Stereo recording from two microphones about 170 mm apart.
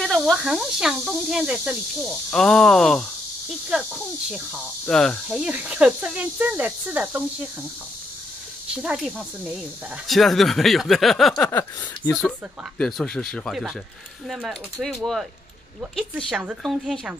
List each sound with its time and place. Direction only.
0.0 s speech: centre (ahead or behind)
8.8 s speech: 5° right (ahead or behind)